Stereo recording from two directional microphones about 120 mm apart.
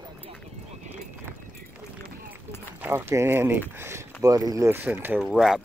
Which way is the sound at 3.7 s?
20° right (ahead or behind).